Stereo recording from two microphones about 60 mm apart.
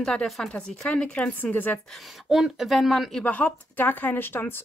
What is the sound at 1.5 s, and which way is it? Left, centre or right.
Speech, left.